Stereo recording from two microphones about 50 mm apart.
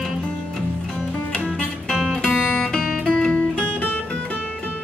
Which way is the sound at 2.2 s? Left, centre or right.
Left.